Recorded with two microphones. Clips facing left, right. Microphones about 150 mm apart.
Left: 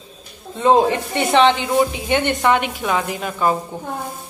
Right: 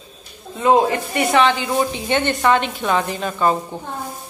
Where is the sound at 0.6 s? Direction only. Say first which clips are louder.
Left 1 dB; 25° left (ahead or behind).